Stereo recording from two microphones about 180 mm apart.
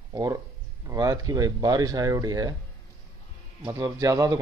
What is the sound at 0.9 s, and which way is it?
A man's voice, 20° right (ahead or behind).